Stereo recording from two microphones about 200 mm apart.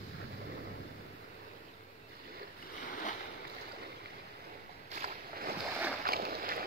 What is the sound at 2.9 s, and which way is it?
Boat, 40° left (ahead or behind).